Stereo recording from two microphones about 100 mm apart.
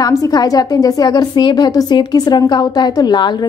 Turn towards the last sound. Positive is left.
turn(degrees=45)  # may be behind; listen again after turning